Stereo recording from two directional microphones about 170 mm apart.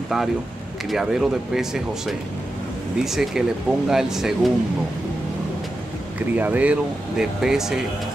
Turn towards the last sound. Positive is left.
turn(degrees=-5)  # may be behind; listen again after turning